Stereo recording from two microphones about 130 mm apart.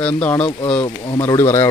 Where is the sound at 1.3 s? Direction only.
20° left (ahead or behind).